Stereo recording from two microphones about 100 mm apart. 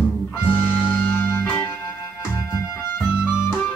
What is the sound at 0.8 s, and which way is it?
Music, 20° left (ahead or behind).